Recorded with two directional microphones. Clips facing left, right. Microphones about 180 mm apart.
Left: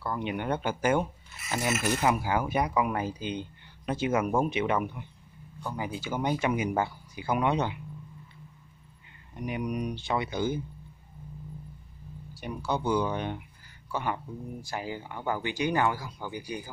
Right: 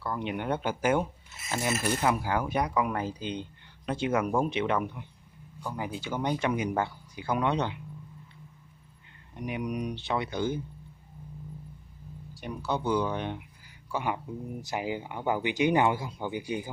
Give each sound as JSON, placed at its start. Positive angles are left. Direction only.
{"t": 0.0, "sound": "speech", "side_deg": 0}
{"t": 9.3, "sound": "speech", "side_deg": 0}
{"t": 12.4, "sound": "speech", "side_deg": 0}
{"t": 13.9, "sound": "speech", "side_deg": -10}